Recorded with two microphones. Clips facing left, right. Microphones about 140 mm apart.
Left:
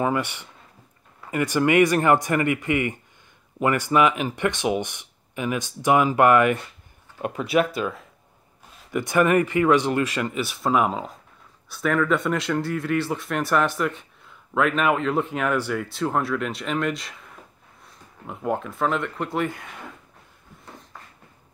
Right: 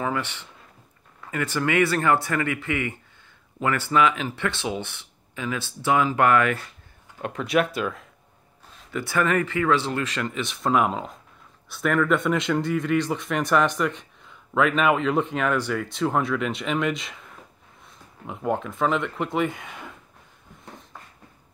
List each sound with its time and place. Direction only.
0.0 s speech: 15° left (ahead or behind)
8.9 s speech: 15° left (ahead or behind); by 19.9 s centre (ahead or behind)